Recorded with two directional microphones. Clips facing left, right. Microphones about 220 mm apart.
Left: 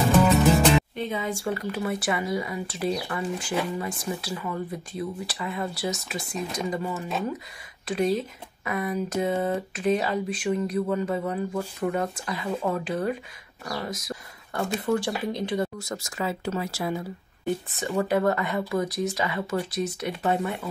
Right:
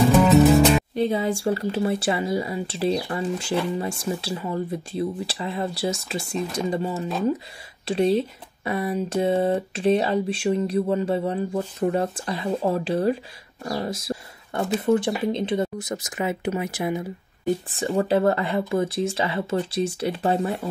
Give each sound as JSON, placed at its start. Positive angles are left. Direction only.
{"t": 0.9, "sound": "speech", "side_deg": -35}
{"t": 17.6, "sound": "speech", "side_deg": -30}